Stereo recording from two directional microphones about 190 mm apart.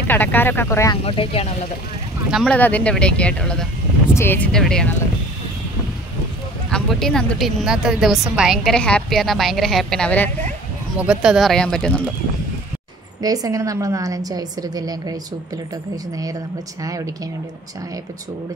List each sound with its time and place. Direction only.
0.1 s speech: 10° left (ahead or behind)
1.0 s speech: 30° left (ahead or behind)
2.3 s speech: 5° left (ahead or behind)
6.7 s speech: centre (ahead or behind)
11.0 s speech: 5° right (ahead or behind)
13.2 s a woman's voice: 20° right (ahead or behind)
16.8 s speech: 15° right (ahead or behind)